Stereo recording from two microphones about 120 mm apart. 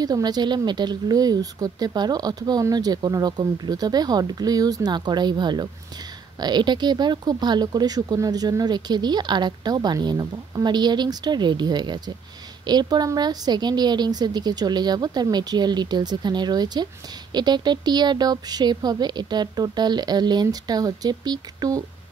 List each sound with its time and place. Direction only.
0.0 s speech: 35° right (ahead or behind)